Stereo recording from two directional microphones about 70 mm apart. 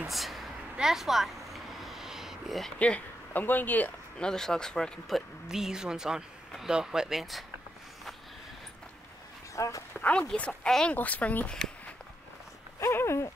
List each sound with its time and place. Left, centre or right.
0.1 s vehicle: centre
2.8 s speech: centre
4.2 s speech: centre
9.6 s speech: left
9.9 s speech: centre
12.8 s a sound: left